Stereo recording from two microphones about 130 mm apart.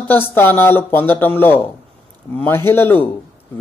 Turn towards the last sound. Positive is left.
turn(degrees=15)  # may be behind; listen again after turning